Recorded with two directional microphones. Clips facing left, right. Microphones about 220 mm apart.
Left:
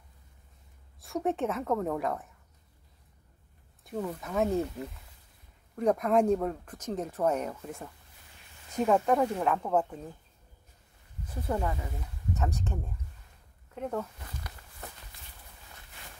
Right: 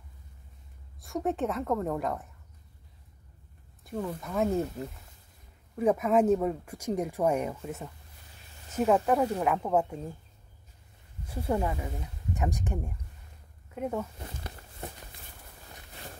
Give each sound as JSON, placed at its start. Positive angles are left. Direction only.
{"t": 1.0, "sound": "a woman's voice", "side_deg": 0}
{"t": 3.8, "sound": "a woman's voice", "side_deg": 0}
{"t": 5.8, "sound": "a woman's voice", "side_deg": -5}
{"t": 11.2, "sound": "speech", "side_deg": -10}
{"t": 14.1, "sound": "a sound", "side_deg": -25}